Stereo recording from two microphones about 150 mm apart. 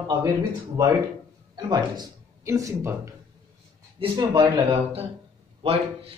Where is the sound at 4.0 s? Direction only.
30° right (ahead or behind).